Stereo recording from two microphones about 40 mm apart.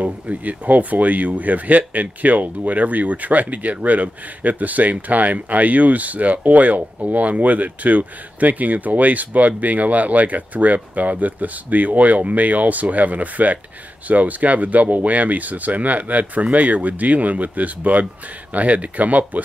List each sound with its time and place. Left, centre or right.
0.0 s speech: right